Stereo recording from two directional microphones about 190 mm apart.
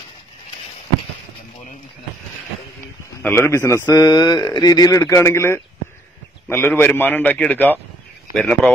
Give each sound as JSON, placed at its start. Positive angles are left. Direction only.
{"t": 3.2, "sound": "speech", "side_deg": 10}